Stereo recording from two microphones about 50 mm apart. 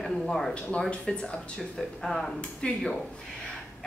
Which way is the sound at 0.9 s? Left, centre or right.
Left.